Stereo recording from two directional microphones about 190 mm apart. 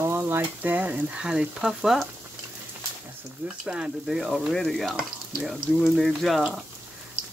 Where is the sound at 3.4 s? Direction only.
5° right (ahead or behind).